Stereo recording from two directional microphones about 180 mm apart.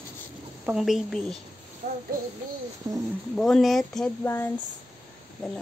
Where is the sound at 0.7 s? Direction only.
Centre (ahead or behind).